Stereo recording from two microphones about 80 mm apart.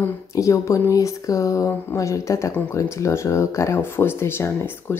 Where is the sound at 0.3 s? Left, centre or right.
Left.